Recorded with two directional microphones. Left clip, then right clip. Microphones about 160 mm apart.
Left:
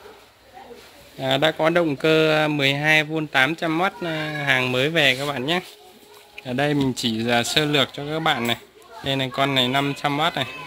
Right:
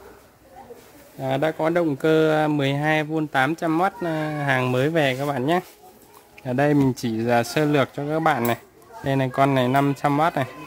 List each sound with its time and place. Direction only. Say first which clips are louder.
1.2 s a man's voice: left 3 dB; 10° right (ahead or behind)
1.9 s speech: left 1 dB; 20° right (ahead or behind)